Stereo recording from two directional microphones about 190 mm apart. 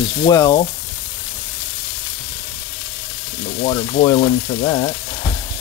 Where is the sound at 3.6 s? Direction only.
20° left (ahead or behind).